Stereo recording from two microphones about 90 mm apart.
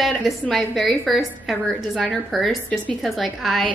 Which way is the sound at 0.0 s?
Centre (ahead or behind).